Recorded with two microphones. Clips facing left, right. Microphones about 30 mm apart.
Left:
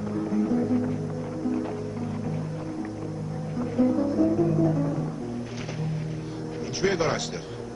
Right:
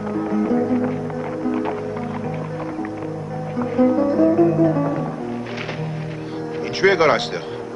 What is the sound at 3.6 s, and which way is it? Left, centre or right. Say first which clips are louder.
Music: right 7 dB; right.